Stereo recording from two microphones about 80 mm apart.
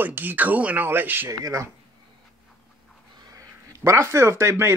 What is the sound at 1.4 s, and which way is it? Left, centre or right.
Speech, right.